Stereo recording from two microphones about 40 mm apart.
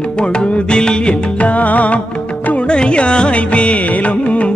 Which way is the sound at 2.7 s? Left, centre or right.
Left.